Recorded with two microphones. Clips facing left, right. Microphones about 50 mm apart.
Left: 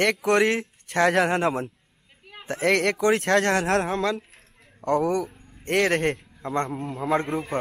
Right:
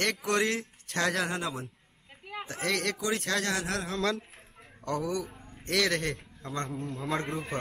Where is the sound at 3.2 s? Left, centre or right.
Left.